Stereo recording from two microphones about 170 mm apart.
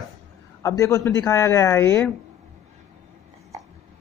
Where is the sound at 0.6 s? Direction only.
15° left (ahead or behind).